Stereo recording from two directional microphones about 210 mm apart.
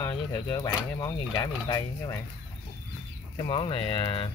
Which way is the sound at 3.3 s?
25° left (ahead or behind).